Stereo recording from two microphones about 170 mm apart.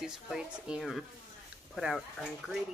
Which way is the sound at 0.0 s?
5° right (ahead or behind).